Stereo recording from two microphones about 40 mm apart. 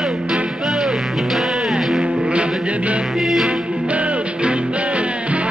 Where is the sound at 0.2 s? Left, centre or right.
Right.